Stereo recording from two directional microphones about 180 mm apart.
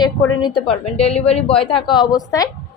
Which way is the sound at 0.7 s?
35° left (ahead or behind).